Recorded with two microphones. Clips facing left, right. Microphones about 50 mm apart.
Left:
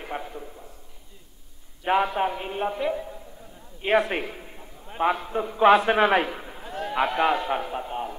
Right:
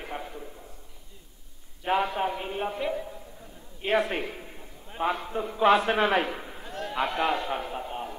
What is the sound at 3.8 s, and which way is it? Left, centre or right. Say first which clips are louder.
Speech: left 4 dB; centre.